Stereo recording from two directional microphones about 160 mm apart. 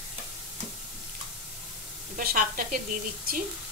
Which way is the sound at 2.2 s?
60° right (ahead or behind).